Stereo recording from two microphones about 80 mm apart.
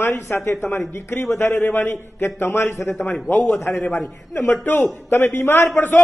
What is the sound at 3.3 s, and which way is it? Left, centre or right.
Speech, left.